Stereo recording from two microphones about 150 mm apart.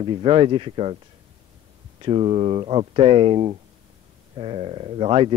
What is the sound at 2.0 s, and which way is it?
Speech, 35° right (ahead or behind).